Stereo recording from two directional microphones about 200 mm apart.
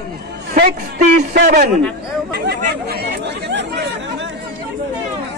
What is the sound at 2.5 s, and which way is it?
Chatter, 50° right (ahead or behind).